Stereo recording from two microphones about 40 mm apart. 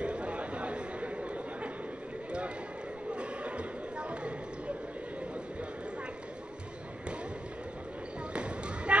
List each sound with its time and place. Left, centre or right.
0.0 s chatter: right
3.2 s a sound: right
8.3 s basketball bounce: right